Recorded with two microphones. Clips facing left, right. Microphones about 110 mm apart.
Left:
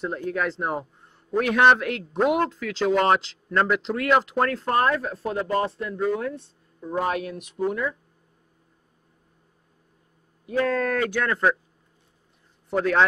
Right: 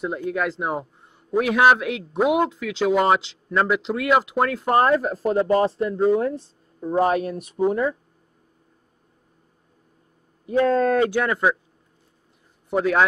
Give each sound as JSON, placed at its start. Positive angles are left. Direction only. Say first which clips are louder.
{"t": 0.0, "sound": "a man's voice", "louder": "right 2 dB", "side_deg": -5}
{"t": 4.7, "sound": "speech", "louder": "right 5 dB", "side_deg": -20}
{"t": 5.1, "sound": "speech", "louder": "right 6 dB", "side_deg": -35}
{"t": 10.5, "sound": "speech", "louder": "right 5 dB", "side_deg": -25}
{"t": 12.6, "sound": "a man's voice", "louder": "right 2 dB", "side_deg": -10}